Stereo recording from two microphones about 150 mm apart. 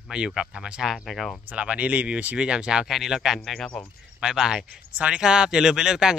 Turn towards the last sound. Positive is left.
turn(degrees=-5)  # may be behind; listen again after turning